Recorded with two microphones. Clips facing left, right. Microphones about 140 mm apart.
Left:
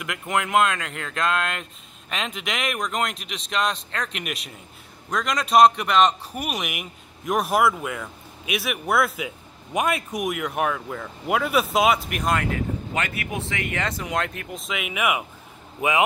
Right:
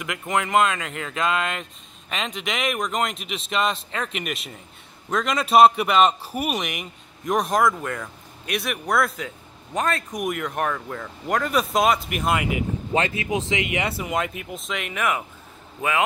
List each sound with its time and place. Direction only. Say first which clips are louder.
0.0 s a man's voice: right 1 dB; centre (ahead or behind)
12.9 s a man's voice: right 5 dB; 25° right (ahead or behind); by 16.0 s 15° left (ahead or behind)